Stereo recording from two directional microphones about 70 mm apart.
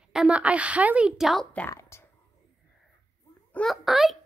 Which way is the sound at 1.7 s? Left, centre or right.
Left.